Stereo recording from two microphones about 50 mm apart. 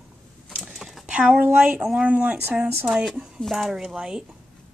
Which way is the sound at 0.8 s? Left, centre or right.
Centre.